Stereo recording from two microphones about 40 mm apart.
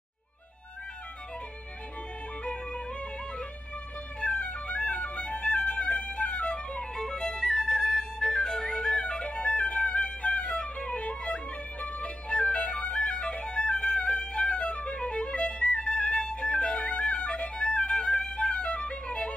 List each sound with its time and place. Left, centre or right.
2.4 s music: left
4.2 s music: left
7.0 s music: centre
14.2 s violin: left
15.6 s music: left